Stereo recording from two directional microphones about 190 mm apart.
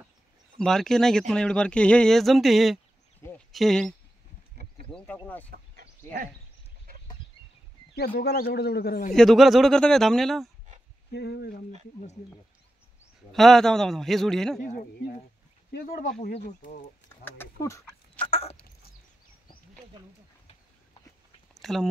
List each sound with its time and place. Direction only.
0.6 s speech: centre (ahead or behind)
3.2 s a sound: 10° left (ahead or behind)
3.5 s speech: centre (ahead or behind)
4.9 s speech: 10° left (ahead or behind)
7.9 s speech: 55° left (ahead or behind)
9.1 s speech: centre (ahead or behind)
11.1 s speech: 60° left (ahead or behind)
13.3 s speech: centre (ahead or behind)
14.6 s speech: 45° left (ahead or behind)
17.2 s speech: 15° left (ahead or behind)
18.2 s a sound: 30° left (ahead or behind)
21.5 s a sound: centre (ahead or behind)